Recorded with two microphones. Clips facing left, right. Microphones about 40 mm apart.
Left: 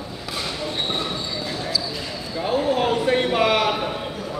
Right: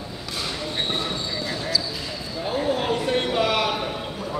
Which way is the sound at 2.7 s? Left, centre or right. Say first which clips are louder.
Left 3 dB; centre.